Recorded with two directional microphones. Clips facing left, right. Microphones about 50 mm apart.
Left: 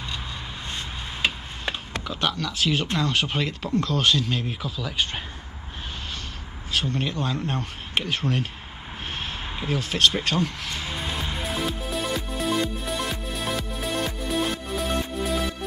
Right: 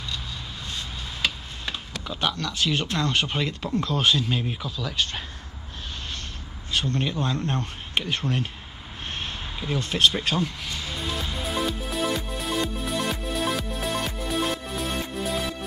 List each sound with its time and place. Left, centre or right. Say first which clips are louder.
0.7 s a sound: left 1 dB; left
2.0 s speech: even; centre
3.8 s speech: even; centre
4.5 s speech: even; centre
6.7 s speech: even; centre
9.7 s speech: even; centre
10.7 s music: left 1 dB; centre
11.4 s music: right 2 dB; centre